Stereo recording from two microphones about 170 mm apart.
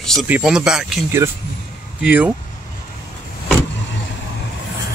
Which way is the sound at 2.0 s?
10° right (ahead or behind).